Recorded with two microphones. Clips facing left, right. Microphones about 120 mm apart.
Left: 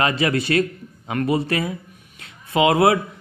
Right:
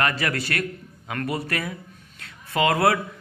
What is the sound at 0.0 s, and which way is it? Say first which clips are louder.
A man's voice: left 5 dB; 20° left (ahead or behind).